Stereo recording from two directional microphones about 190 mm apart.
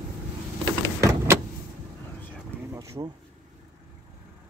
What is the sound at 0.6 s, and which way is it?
Power windows, 15° right (ahead or behind).